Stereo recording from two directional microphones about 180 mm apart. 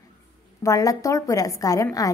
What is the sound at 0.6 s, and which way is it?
A woman's voice, 20° left (ahead or behind).